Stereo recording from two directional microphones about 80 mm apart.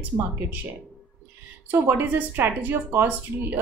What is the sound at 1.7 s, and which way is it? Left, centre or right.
A woman's voice, right.